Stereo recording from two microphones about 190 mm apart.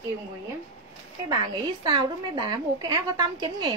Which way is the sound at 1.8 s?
20° right (ahead or behind).